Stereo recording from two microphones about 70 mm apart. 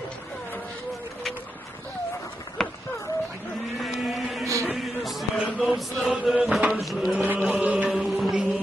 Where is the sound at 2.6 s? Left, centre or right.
Centre.